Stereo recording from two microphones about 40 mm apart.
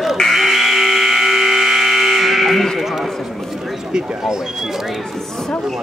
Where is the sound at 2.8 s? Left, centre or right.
Centre.